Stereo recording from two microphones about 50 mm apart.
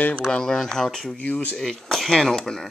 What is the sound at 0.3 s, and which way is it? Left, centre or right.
Speech, centre.